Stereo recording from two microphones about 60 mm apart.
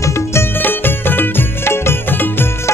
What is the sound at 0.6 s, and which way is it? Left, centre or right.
Music, left.